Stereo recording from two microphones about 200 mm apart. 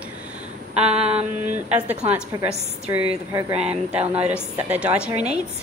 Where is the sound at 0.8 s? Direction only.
30° right (ahead or behind).